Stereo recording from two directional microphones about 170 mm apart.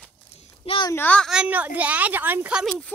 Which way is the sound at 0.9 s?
10° left (ahead or behind).